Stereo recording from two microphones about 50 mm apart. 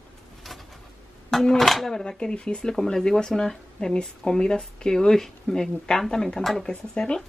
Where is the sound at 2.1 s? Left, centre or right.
Left.